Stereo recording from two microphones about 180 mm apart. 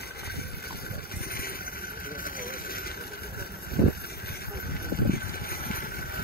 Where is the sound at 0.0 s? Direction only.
60° left (ahead or behind).